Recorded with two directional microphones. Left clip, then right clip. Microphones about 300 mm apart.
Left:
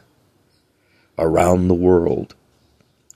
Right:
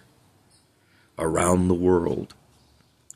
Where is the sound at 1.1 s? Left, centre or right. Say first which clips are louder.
Left 7 dB; centre.